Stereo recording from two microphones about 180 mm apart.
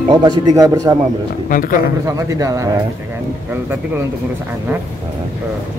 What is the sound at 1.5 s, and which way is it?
Speech, 50° left (ahead or behind).